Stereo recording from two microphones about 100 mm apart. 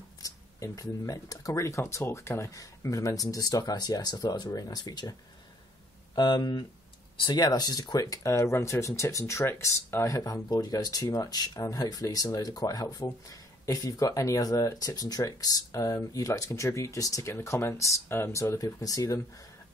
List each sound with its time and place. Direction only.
0.2 s speech: 35° left (ahead or behind)
6.1 s speech: 45° left (ahead or behind)